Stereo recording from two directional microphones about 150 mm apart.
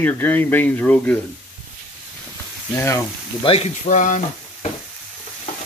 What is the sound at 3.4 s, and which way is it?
Speech, 40° left (ahead or behind).